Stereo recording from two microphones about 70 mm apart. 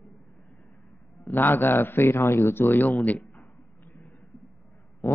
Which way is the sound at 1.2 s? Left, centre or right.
Left.